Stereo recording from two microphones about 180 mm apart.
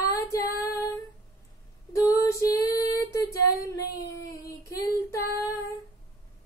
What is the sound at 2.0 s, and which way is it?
Female singing, 20° left (ahead or behind).